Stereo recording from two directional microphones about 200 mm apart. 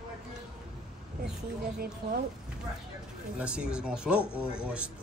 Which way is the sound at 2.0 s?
55° right (ahead or behind).